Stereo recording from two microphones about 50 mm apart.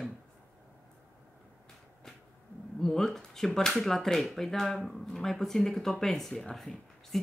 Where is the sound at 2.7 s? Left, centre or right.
Centre.